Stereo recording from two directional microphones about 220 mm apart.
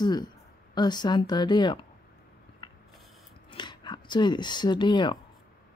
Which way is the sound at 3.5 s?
20° left (ahead or behind).